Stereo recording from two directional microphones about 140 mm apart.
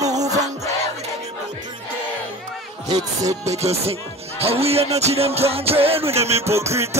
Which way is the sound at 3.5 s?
50° right (ahead or behind).